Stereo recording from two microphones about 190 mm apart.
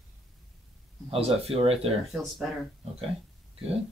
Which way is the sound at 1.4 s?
30° right (ahead or behind).